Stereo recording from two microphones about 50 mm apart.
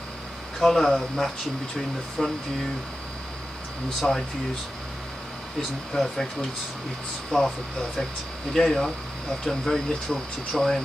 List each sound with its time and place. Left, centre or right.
0.6 s speech: centre
2.2 s speech: centre
4.0 s speech: centre
7.3 s speech: centre
8.5 s speech: centre